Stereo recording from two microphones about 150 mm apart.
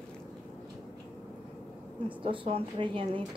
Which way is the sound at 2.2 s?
35° right (ahead or behind).